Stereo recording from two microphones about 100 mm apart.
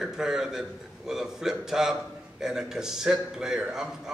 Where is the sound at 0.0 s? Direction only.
5° right (ahead or behind).